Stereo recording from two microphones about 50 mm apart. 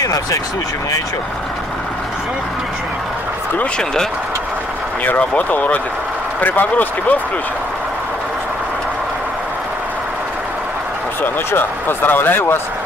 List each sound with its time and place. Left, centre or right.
3.7 s speech: centre
5.5 s a man's voice: left
11.5 s speech: left